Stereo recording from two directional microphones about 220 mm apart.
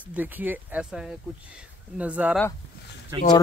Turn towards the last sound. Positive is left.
turn(degrees=-20)  # may be behind; listen again after turning